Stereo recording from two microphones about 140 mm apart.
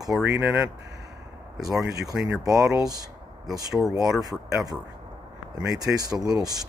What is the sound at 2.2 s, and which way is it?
Speech, 25° right (ahead or behind).